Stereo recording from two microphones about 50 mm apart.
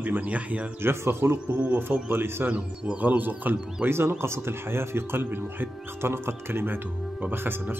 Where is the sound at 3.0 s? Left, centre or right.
Right.